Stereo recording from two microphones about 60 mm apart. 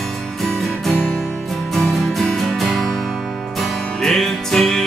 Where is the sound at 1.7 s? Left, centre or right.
Centre.